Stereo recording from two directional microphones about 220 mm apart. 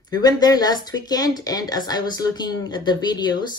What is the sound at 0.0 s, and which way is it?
Speech, 20° left (ahead or behind).